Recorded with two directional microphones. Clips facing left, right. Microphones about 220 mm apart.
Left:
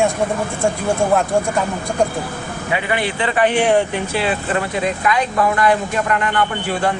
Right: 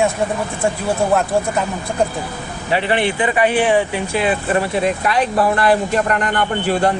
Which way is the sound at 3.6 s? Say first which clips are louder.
Left 1 dB; 5° right (ahead or behind).